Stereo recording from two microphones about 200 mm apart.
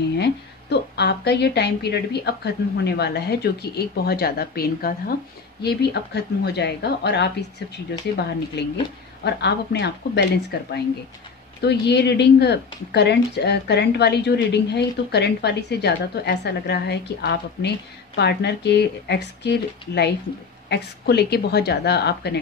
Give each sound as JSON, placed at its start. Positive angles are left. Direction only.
{"t": 0.2, "sound": "a woman's voice", "side_deg": 60}
{"t": 8.6, "sound": "a woman's voice", "side_deg": 60}